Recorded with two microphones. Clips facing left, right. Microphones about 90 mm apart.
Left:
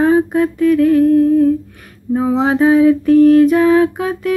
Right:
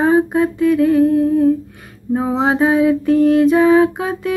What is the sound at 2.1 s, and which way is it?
Music, 25° right (ahead or behind).